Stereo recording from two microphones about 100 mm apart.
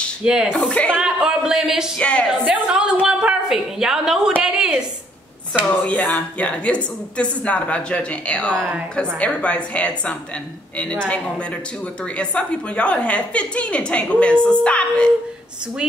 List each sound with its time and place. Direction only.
0.2 s a woman's voice: 10° right (ahead or behind)
0.7 s a woman's voice: 10° left (ahead or behind)
1.0 s a woman's voice: 5° right (ahead or behind)
2.0 s a woman's voice: 10° left (ahead or behind)
2.4 s a woman's voice: 10° right (ahead or behind)
5.7 s a woman's voice: 15° left (ahead or behind)